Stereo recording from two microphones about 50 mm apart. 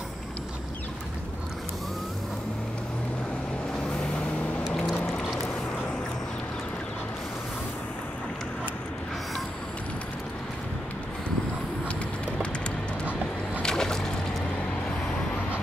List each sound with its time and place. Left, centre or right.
3.8 s vehicle: centre
4.6 s music: centre
5.0 s boat: left
13.6 s music: centre